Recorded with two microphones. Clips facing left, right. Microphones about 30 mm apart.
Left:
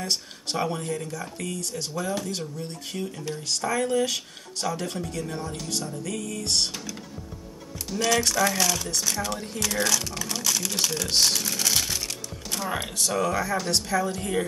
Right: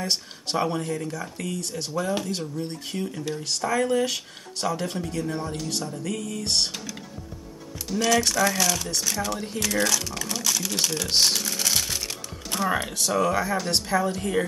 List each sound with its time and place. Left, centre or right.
0.0 s speech: centre
7.9 s speech: centre
11.4 s crumpling: centre
13.0 s speech: centre
13.3 s speech: centre